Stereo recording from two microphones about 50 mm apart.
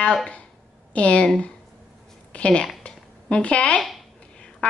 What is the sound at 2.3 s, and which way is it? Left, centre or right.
Speech, left.